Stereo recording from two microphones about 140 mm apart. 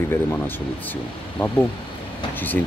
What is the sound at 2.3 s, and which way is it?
Speech, 15° left (ahead or behind).